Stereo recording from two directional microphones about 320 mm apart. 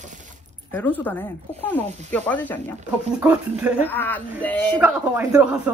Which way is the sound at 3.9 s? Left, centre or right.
Centre.